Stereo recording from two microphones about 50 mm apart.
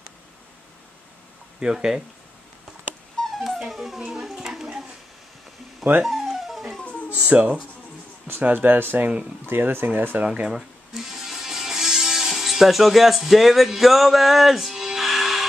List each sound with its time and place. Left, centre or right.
1.6 s speech: centre
3.2 s music: centre
6.0 s music: centre
7.1 s speech: right
8.3 s speech: right
10.2 s speech: centre
11.0 s music: centre